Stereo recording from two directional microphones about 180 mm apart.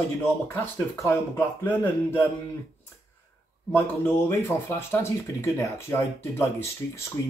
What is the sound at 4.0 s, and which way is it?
Speech, 15° left (ahead or behind).